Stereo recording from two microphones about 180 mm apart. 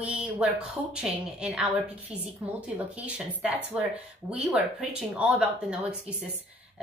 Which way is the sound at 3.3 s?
10° right (ahead or behind).